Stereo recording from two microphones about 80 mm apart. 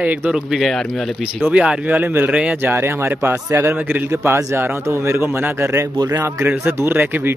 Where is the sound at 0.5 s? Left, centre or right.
Centre.